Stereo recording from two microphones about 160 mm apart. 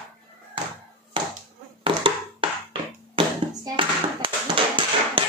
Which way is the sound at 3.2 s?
35° right (ahead or behind).